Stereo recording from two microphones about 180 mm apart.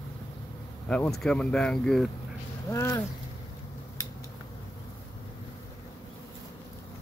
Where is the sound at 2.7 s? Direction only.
15° left (ahead or behind).